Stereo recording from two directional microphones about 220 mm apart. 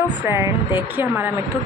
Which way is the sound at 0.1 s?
10° right (ahead or behind).